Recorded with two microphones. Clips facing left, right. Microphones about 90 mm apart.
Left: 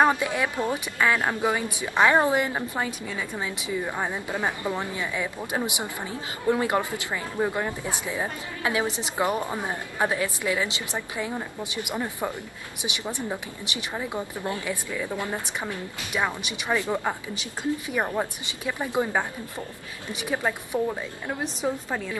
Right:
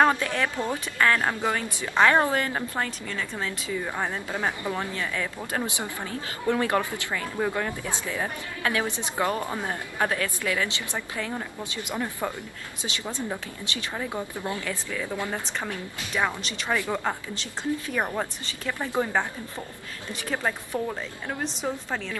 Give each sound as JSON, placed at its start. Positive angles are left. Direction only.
{"t": 0.0, "sound": "a woman's voice", "side_deg": 15}
{"t": 20.8, "sound": "a woman's voice", "side_deg": 5}